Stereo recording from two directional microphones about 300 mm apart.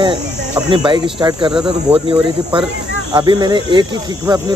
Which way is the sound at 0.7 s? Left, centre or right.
Centre.